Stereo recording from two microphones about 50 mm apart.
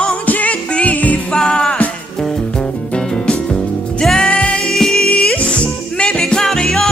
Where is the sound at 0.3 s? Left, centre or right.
Left.